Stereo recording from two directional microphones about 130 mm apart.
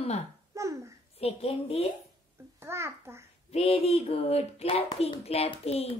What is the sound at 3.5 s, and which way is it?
A child's voice, 50° left (ahead or behind).